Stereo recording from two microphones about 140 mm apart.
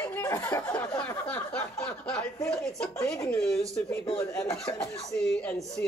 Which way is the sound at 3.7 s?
20° left (ahead or behind).